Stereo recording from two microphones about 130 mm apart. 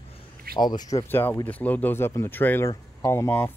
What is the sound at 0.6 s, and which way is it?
Speech, 30° left (ahead or behind).